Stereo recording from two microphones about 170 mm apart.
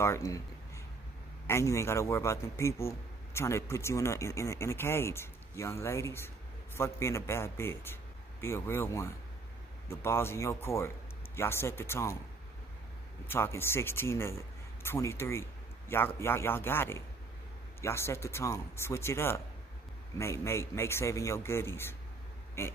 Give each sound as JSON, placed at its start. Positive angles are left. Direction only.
{"t": 0.0, "sound": "a man's voice", "side_deg": 15}
{"t": 1.5, "sound": "a man's voice", "side_deg": 15}
{"t": 13.3, "sound": "a man's voice", "side_deg": 15}